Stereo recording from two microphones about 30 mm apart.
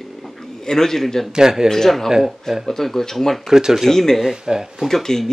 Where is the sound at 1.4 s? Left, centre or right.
Centre.